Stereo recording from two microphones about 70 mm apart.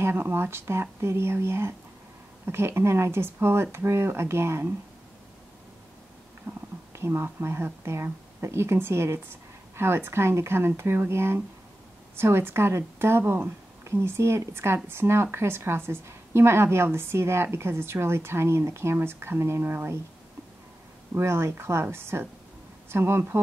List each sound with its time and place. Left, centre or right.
0.0 s a woman's voice: right
6.5 s whispering: right
6.9 s a woman's voice: right
21.1 s a woman's voice: right